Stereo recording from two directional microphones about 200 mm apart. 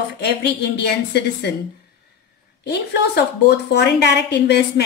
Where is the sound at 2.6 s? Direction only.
55° left (ahead or behind).